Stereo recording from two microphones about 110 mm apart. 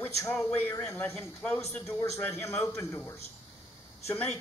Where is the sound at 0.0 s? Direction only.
25° left (ahead or behind).